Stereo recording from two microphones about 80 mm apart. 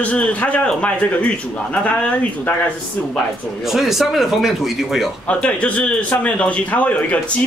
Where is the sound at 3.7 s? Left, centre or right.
Centre.